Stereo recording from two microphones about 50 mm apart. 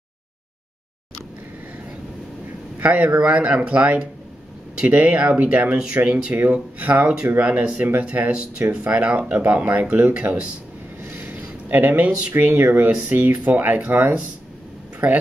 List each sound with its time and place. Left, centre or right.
2.8 s speech: right
6.3 s speech: right
11.1 s a sound: right
12.4 s speech: right
13.1 s speech: right